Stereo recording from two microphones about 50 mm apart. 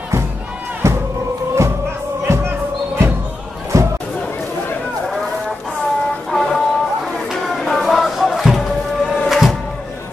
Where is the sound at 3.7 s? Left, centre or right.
Right.